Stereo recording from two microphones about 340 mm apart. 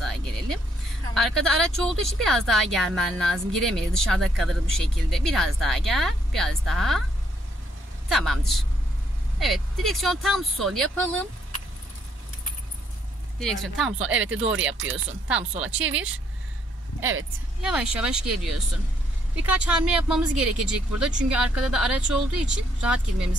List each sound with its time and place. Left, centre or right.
0.0 s vehicle: centre
1.1 s speech: centre
8.1 s speech: centre
9.8 s speech: centre
13.4 s speech: centre
17.0 s speech: right
17.6 s speech: centre